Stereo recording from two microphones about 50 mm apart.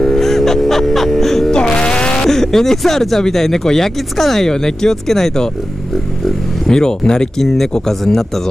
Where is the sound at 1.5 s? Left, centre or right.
Centre.